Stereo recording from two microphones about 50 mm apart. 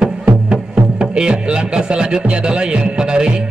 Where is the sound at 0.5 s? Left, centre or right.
Centre.